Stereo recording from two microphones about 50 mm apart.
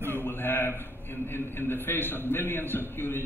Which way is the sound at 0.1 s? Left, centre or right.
Left.